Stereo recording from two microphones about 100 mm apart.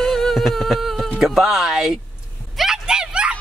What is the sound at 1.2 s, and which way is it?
Speech, centre (ahead or behind).